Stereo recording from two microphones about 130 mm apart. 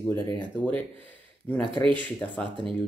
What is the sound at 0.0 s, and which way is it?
Speech, 20° left (ahead or behind).